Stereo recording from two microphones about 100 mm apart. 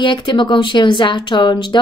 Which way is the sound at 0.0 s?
50° left (ahead or behind).